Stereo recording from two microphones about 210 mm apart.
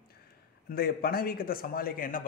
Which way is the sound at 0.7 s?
45° left (ahead or behind).